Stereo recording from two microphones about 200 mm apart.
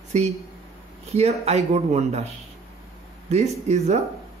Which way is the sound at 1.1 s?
30° right (ahead or behind).